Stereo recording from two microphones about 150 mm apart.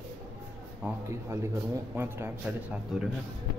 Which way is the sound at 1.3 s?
15° right (ahead or behind).